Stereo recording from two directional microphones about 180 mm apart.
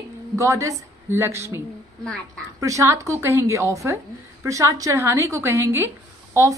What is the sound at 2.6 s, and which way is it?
A woman's voice, 15° right (ahead or behind).